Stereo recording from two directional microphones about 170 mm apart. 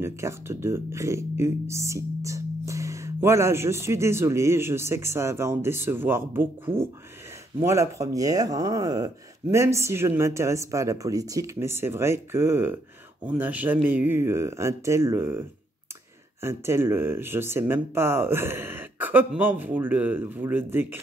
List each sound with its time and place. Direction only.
0.0 s speech: 15° right (ahead or behind)